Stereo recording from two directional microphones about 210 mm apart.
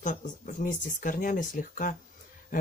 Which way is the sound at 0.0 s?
35° left (ahead or behind).